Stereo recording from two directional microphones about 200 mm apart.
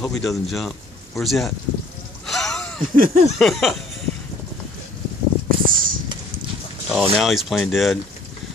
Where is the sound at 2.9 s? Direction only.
45° right (ahead or behind).